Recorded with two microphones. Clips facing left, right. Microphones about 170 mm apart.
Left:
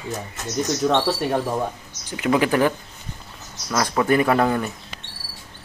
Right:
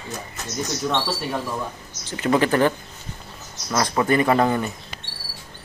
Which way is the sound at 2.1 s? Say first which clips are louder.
Even; 10° left (ahead or behind).